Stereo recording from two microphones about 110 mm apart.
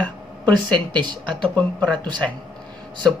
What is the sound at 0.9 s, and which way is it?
Speech, 45° right (ahead or behind).